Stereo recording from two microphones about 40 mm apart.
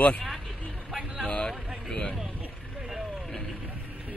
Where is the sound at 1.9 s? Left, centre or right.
Left.